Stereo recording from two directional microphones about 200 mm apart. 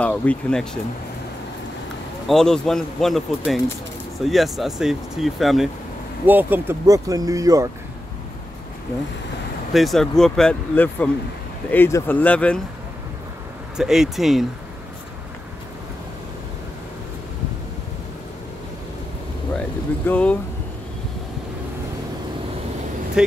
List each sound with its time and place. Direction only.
0.0 s speech: 5° left (ahead or behind)
2.2 s speech: 5° left (ahead or behind); by 7.7 s 15° right (ahead or behind)
9.8 s speech: centre (ahead or behind)
13.7 s speech: centre (ahead or behind)
20.1 s speech: 5° left (ahead or behind)
23.2 s speech: 5° right (ahead or behind)